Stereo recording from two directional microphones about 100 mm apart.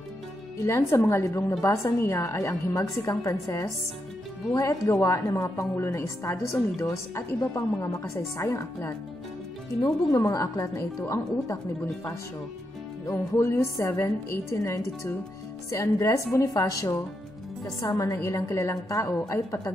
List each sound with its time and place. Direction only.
0.6 s a woman's voice: 25° left (ahead or behind)
10.1 s a woman's voice: 35° left (ahead or behind)
13.0 s a woman's voice: 30° left (ahead or behind)